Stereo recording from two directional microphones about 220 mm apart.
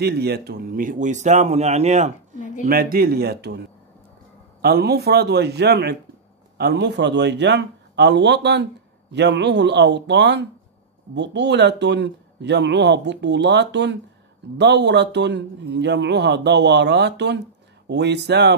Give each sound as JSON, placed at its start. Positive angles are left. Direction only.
{"t": 0.0, "sound": "speech", "side_deg": -45}
{"t": 2.6, "sound": "a man's voice", "side_deg": -40}